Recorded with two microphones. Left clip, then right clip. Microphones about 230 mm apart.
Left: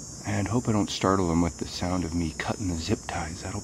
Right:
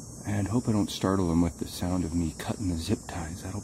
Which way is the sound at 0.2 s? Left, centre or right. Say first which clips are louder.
Left 2 dB; centre.